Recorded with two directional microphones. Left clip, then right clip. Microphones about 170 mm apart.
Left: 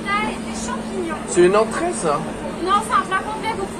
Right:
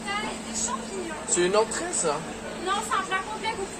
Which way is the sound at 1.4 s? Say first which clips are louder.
Left 11 dB; 10° right (ahead or behind).